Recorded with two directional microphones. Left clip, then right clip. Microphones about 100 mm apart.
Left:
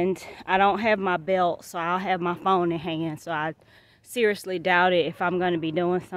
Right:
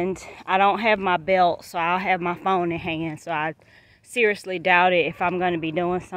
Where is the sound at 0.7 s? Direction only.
30° left (ahead or behind).